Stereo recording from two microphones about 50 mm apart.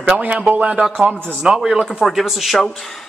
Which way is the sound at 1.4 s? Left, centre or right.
Centre.